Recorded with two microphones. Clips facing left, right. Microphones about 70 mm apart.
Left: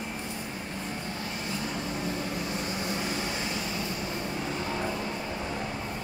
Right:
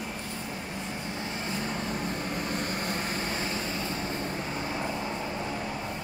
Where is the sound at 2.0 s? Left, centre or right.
Right.